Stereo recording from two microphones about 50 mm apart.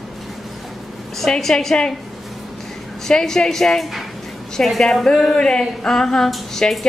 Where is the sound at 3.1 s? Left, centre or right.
Centre.